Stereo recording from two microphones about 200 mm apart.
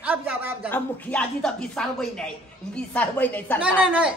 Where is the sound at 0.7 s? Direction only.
10° left (ahead or behind).